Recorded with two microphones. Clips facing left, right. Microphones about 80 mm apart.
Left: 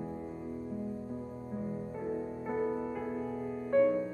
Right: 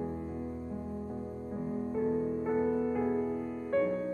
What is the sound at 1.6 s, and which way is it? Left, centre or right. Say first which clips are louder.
Music: right 5 dB; centre.